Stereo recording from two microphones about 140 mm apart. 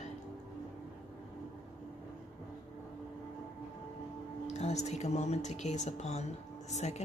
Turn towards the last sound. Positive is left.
turn(degrees=50)  # may be behind; listen again after turning